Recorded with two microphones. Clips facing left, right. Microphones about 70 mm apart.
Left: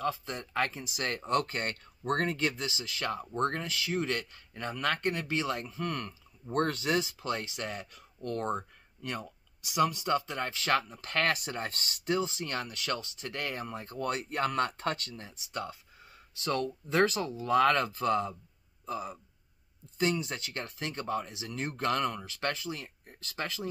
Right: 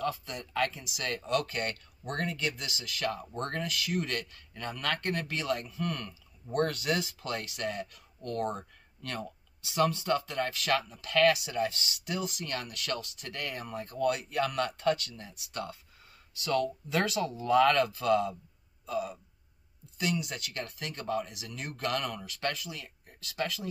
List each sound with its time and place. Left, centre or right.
0.0 s speech: left
9.0 s speech: centre; by 15.3 s left
17.2 s speech: centre